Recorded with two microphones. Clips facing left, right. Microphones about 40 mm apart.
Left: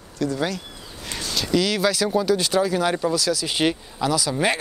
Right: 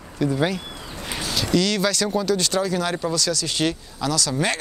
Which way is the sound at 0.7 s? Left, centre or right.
Right.